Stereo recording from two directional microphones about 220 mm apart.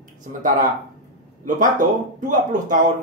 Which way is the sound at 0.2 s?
35° right (ahead or behind).